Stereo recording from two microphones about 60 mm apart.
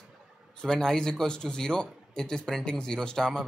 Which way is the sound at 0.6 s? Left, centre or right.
Centre.